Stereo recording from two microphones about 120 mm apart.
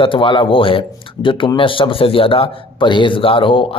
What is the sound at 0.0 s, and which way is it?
A man's voice, 45° left (ahead or behind).